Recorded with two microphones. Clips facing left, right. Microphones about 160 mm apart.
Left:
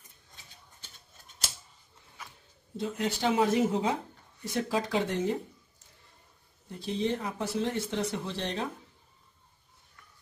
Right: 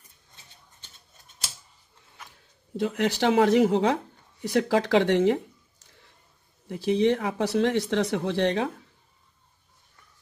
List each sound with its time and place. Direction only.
2.8 s speech: 75° right (ahead or behind)
6.7 s speech: 75° right (ahead or behind)